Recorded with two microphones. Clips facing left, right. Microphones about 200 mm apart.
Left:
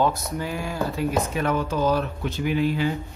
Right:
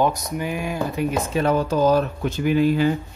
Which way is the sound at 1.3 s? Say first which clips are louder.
Right 4 dB; 30° right (ahead or behind).